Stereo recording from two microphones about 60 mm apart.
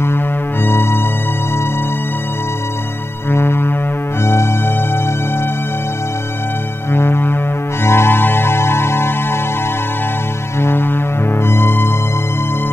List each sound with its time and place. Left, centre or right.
3.3 s music: left
6.9 s music: left
10.6 s music: left